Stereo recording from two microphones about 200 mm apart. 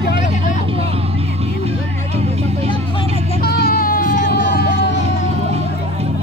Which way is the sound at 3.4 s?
50° left (ahead or behind).